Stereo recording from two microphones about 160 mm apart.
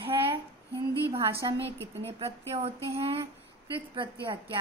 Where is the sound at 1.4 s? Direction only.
25° right (ahead or behind).